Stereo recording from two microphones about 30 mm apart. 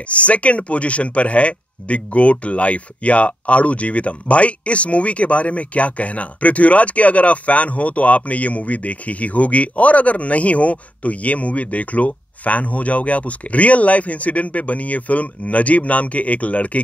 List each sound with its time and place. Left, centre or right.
0.1 s speech: left